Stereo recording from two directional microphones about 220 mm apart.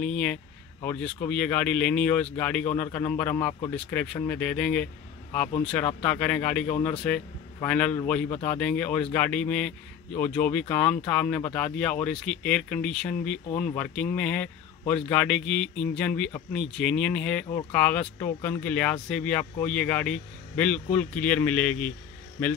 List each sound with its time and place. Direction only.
0.0 s speech: 5° left (ahead or behind)